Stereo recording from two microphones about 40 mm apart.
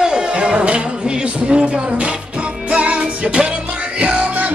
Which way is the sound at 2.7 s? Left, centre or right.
Right.